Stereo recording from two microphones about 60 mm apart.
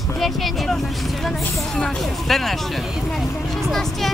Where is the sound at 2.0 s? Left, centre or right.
Centre.